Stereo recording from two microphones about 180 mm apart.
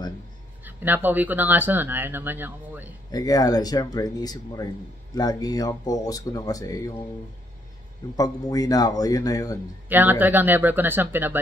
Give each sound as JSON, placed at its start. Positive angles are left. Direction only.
{"t": 0.7, "sound": "speech", "side_deg": -10}
{"t": 3.1, "sound": "speech", "side_deg": 20}
{"t": 8.2, "sound": "speech", "side_deg": 20}
{"t": 9.8, "sound": "speech", "side_deg": -10}